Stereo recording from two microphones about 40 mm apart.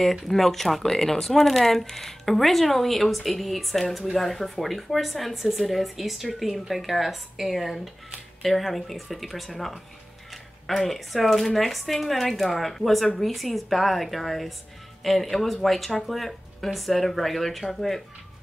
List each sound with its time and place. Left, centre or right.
0.0 s speech: centre